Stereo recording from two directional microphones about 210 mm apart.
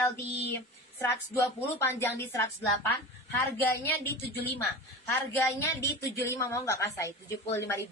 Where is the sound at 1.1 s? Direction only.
10° left (ahead or behind).